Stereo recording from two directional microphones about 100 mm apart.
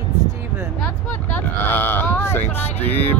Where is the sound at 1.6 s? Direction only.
20° left (ahead or behind).